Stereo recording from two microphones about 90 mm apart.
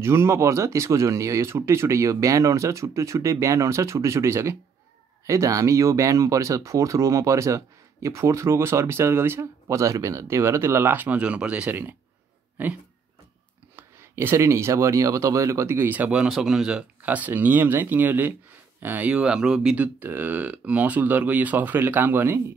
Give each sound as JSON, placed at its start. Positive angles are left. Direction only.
{"t": 0.0, "sound": "speech", "side_deg": -30}
{"t": 13.7, "sound": "speech", "side_deg": -30}
{"t": 17.0, "sound": "speech", "side_deg": -20}